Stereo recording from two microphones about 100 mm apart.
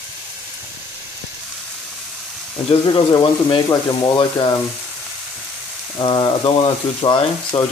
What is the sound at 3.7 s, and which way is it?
Speech, 45° left (ahead or behind).